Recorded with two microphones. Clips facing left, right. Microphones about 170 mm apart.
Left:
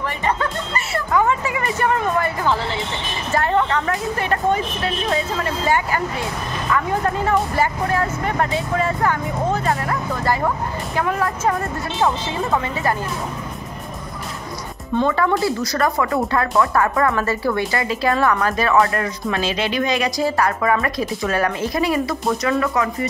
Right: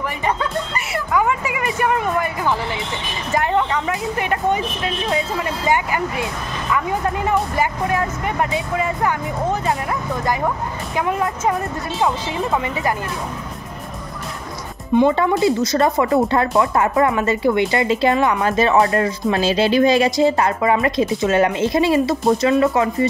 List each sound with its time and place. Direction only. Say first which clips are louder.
0.7 s speech: left 2 dB; 10° right (ahead or behind)
7.5 s speech: even; 15° right (ahead or behind)
11.0 s speech: right 1 dB; 20° right (ahead or behind)
15.0 s speech: right 3 dB; 15° right (ahead or behind)